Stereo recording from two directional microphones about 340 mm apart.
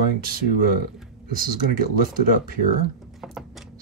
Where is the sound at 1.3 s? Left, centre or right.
Right.